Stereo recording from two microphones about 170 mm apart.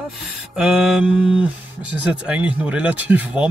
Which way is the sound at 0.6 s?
Centre (ahead or behind).